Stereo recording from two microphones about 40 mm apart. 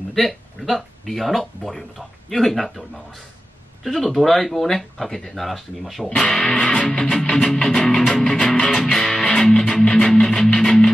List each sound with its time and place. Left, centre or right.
0.1 s speech: centre
3.8 s speech: centre
6.0 s music: centre